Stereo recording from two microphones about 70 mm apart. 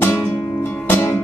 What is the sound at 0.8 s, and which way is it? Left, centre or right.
Music, left.